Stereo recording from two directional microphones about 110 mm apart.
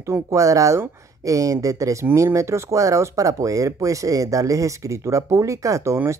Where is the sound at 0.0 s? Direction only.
30° right (ahead or behind).